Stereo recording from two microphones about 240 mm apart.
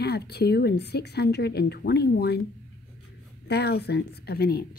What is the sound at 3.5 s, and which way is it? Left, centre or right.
A woman's voice, left.